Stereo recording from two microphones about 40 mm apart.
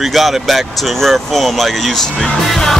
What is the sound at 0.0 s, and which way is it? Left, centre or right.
Speech, centre.